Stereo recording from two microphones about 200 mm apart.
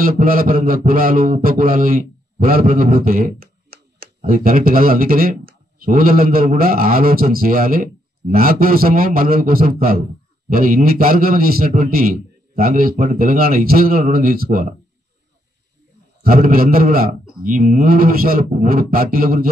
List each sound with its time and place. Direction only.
0.0 s mantra: 45° right (ahead or behind)
4.2 s a man's voice: 40° right (ahead or behind)
16.2 s a man's voice: 45° right (ahead or behind)